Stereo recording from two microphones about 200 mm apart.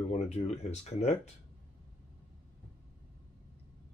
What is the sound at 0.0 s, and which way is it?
Speech, 35° left (ahead or behind).